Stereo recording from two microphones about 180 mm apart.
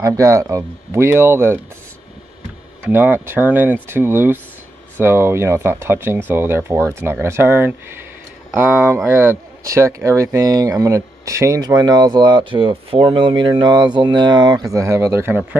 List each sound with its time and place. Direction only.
0.0 s speech: 20° right (ahead or behind)
2.8 s speech: 10° right (ahead or behind)